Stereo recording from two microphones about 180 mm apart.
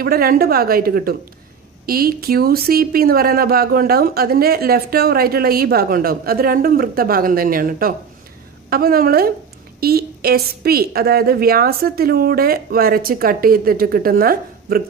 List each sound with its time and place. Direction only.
0.0 s speech: 55° right (ahead or behind)